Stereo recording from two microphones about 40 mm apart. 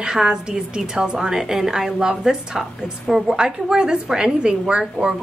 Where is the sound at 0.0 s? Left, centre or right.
Centre.